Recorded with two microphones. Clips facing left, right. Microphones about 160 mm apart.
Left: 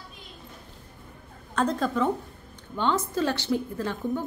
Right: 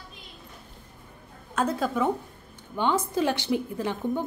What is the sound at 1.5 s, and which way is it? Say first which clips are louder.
A woman's voice: left 1 dB; 5° right (ahead or behind).